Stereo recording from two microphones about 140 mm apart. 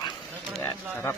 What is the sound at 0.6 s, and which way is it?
Speech, 15° left (ahead or behind).